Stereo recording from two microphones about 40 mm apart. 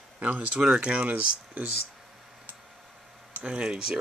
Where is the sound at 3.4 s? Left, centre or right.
Right.